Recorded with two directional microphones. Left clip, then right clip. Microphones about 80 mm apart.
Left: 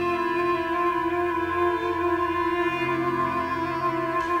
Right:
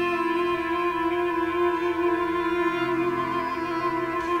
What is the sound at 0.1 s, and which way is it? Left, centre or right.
Music, centre.